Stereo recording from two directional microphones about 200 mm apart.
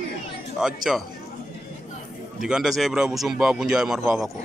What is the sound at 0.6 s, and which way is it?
Speech, centre (ahead or behind).